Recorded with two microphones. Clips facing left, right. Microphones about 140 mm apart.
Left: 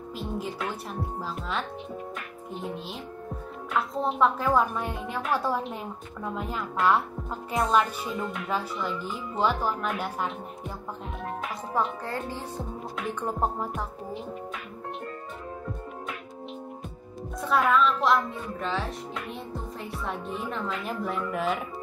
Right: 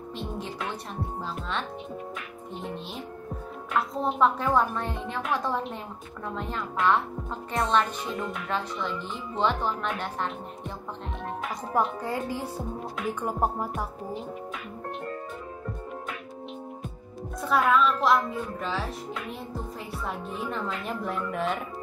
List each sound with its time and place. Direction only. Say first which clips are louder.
0.2 s a woman's voice: left 2 dB; centre (ahead or behind)
2.5 s a woman's voice: left 1 dB; centre (ahead or behind)
12.0 s music: right 3 dB; 10° right (ahead or behind)
17.4 s a woman's voice: even; centre (ahead or behind)